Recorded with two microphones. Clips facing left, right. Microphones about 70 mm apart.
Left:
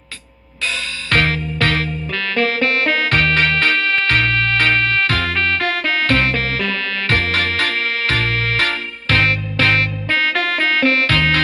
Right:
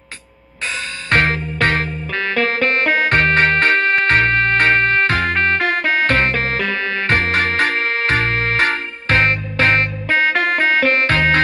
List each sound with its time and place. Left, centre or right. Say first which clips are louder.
1.1 s music: right 1 dB; right